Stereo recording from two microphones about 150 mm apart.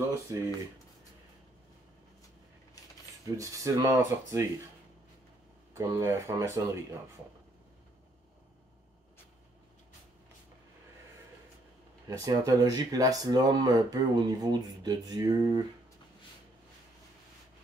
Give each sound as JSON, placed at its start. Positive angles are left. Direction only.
{"t": 0.3, "sound": "speech", "side_deg": -20}
{"t": 3.3, "sound": "speech", "side_deg": -20}
{"t": 5.8, "sound": "speech", "side_deg": -20}
{"t": 12.1, "sound": "speech", "side_deg": -25}